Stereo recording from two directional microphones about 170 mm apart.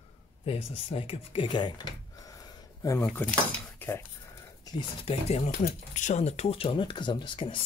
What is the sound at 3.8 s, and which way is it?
Dishes, 10° left (ahead or behind).